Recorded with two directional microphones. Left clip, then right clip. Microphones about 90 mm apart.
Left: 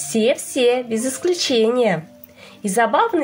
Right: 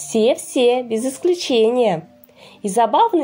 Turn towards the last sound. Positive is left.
turn(degrees=-30)  # may be behind; listen again after turning